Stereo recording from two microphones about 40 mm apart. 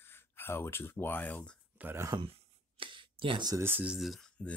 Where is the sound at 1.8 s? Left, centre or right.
Right.